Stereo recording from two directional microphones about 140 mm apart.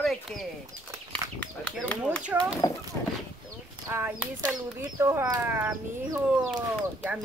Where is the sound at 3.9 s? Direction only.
15° right (ahead or behind).